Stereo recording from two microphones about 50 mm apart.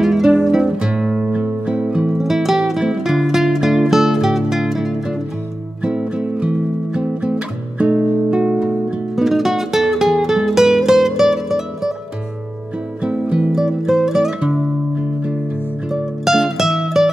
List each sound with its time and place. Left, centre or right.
0.0 s music: centre
2.1 s music: centre
5.8 s music: centre
9.1 s music: centre
13.0 s music: right
13.5 s music: centre
15.9 s music: centre